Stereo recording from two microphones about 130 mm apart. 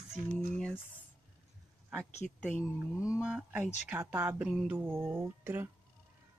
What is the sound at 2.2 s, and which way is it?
Speech, 5° left (ahead or behind).